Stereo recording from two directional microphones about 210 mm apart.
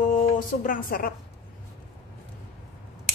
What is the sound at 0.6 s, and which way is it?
Speech, 40° left (ahead or behind).